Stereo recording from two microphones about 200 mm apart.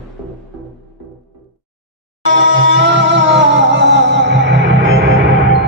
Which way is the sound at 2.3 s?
65° right (ahead or behind).